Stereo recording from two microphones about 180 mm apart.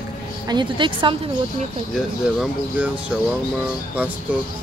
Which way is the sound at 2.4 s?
5° right (ahead or behind).